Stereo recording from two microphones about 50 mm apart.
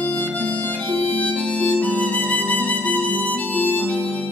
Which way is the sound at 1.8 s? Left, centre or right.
Left.